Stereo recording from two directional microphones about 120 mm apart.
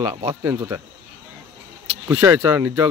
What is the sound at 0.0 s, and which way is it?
Speech, 35° right (ahead or behind).